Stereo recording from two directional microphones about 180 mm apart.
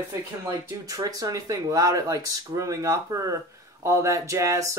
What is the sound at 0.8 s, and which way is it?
Speech, 20° right (ahead or behind).